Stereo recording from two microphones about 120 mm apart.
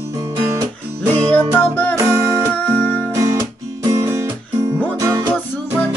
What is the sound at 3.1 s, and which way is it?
Music, 25° right (ahead or behind).